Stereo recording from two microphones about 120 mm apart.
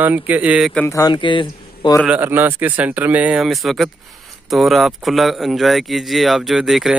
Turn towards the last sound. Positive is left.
turn(degrees=0)  # may be behind; listen again after turning